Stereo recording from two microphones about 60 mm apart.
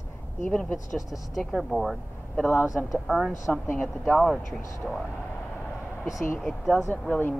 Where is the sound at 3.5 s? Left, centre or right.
Left.